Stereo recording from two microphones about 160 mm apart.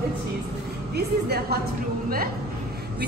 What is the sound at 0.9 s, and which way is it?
Speech, 85° right.